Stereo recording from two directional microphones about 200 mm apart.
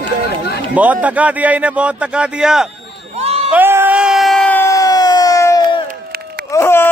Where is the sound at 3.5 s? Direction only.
10° right (ahead or behind); by 5.5 s 15° left (ahead or behind).